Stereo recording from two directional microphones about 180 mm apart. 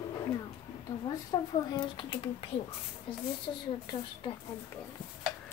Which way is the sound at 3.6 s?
25° left (ahead or behind).